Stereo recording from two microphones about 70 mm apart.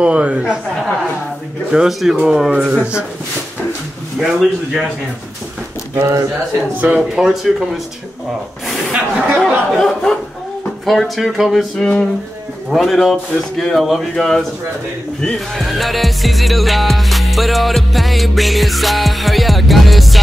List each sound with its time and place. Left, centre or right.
0.0 s speech: centre
1.7 s music: centre
2.1 s speech: centre
4.2 s music: centre
5.9 s speech: right
7.2 s music: centre
8.6 s a sound: centre
10.9 s music: centre
11.8 s a sound: centre
12.7 s music: centre